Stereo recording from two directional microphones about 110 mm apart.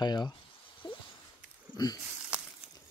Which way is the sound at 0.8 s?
50° left (ahead or behind).